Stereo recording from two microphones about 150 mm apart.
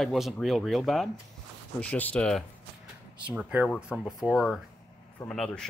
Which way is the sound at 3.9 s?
Centre (ahead or behind).